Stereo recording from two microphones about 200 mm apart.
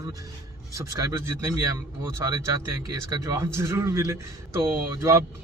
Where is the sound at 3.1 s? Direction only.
15° right (ahead or behind).